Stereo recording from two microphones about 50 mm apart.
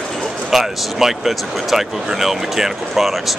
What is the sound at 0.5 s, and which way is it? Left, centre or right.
Speech, centre.